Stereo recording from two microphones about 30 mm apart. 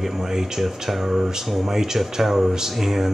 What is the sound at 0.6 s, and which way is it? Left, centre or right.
Speech, centre.